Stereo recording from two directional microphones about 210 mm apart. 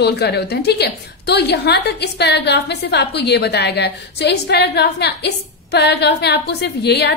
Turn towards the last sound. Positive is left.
turn(degrees=50)  # may be behind; listen again after turning